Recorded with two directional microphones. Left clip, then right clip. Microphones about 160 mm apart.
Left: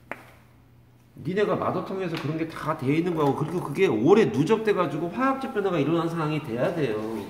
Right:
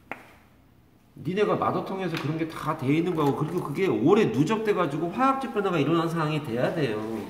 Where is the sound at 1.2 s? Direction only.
20° left (ahead or behind); by 6.9 s 5° right (ahead or behind).